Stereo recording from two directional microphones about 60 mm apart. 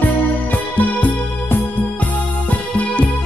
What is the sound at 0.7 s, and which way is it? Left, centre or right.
Music, left.